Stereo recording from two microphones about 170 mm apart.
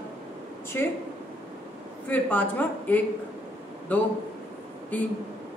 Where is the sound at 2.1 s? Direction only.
10° left (ahead or behind).